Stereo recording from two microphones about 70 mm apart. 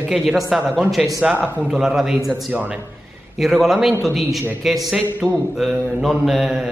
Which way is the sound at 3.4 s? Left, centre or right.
Centre.